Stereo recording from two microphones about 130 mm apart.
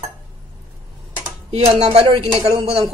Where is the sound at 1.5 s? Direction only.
50° right (ahead or behind).